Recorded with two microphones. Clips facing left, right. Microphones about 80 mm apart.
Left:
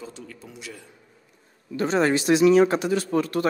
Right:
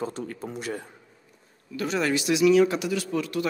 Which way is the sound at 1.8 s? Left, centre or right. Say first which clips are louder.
Left 4 dB; left.